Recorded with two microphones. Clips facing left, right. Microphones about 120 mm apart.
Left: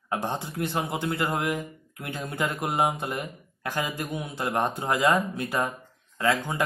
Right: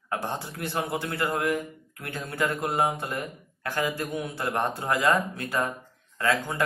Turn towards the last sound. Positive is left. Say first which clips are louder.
# left 2 dB
turn(degrees=20)  # may be behind; listen again after turning